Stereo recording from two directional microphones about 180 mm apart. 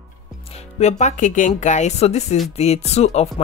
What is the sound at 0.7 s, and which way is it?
Speech, 40° left (ahead or behind).